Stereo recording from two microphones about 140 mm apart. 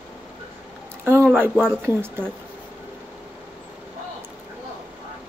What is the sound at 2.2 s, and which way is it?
Speech, 15° right (ahead or behind).